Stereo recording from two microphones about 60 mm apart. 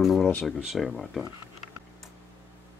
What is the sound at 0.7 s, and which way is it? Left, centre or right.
Speech, centre.